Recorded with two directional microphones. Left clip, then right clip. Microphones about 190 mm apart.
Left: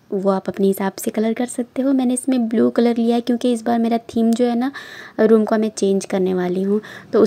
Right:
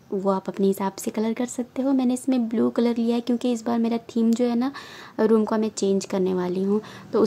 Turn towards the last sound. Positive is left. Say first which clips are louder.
# left 5 dB
turn(degrees=15)  # may be behind; listen again after turning